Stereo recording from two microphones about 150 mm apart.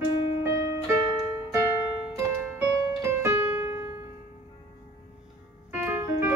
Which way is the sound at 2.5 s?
15° right (ahead or behind).